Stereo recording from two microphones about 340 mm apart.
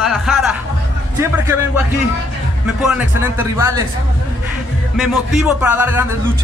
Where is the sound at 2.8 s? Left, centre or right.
Centre.